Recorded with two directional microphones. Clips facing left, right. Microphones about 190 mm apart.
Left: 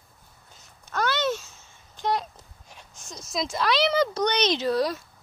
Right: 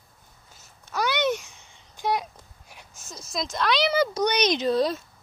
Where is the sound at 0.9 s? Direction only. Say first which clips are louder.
Right 1 dB; 10° right (ahead or behind).